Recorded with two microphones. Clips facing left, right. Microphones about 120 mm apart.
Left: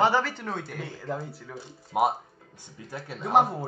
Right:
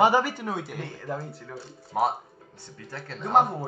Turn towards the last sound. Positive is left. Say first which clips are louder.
# even
turn(degrees=0)  # may be behind; listen again after turning